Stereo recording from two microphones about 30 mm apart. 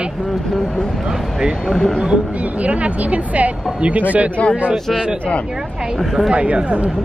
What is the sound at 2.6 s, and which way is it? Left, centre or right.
Speech, right.